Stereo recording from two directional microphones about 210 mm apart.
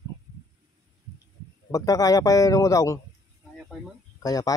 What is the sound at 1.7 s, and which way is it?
Speech, 15° left (ahead or behind).